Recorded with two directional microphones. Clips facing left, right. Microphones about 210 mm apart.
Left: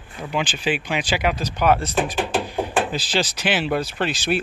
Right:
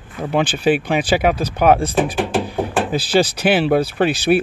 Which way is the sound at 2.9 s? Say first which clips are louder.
Right 8 dB; 55° right (ahead or behind).